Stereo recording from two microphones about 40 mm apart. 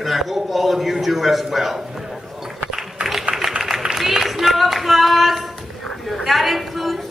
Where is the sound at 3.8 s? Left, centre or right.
Centre.